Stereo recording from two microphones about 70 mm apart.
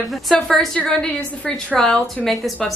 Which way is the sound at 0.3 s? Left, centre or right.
Centre.